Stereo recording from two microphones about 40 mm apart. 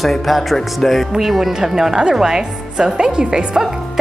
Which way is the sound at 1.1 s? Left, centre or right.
Centre.